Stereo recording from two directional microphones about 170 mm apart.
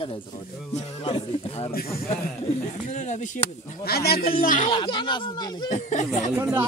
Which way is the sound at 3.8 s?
65° left (ahead or behind).